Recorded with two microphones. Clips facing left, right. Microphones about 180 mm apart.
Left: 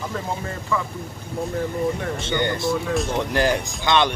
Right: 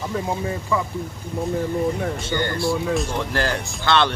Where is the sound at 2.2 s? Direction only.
20° left (ahead or behind).